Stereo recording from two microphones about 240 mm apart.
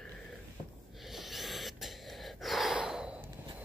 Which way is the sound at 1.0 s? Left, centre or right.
Centre.